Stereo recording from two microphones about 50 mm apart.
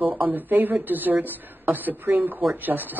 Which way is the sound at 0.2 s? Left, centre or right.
Right.